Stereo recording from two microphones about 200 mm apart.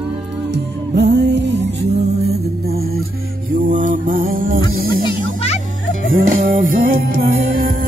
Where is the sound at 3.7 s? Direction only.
40° right (ahead or behind).